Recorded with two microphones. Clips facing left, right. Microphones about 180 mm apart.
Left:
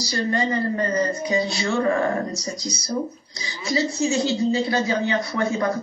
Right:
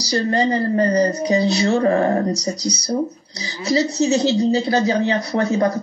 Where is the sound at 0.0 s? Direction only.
35° right (ahead or behind).